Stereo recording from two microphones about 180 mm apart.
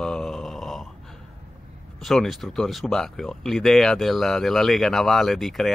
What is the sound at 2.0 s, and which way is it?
Speech, centre (ahead or behind).